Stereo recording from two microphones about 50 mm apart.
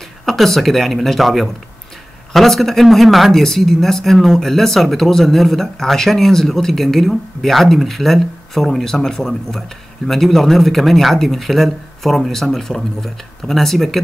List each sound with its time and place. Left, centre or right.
0.2 s speech: centre